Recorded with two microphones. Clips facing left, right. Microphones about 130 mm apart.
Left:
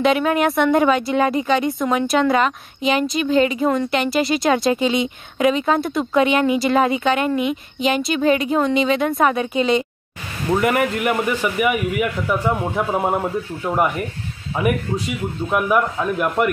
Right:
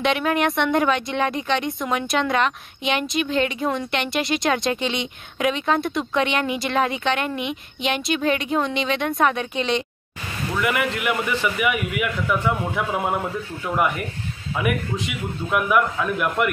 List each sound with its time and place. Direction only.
0.0 s a woman's voice: centre (ahead or behind)
10.5 s a man's voice: 40° left (ahead or behind)